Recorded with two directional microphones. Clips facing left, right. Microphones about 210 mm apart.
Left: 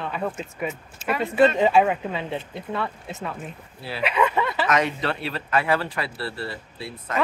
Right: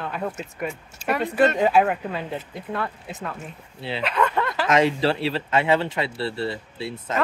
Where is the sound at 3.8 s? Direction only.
25° right (ahead or behind).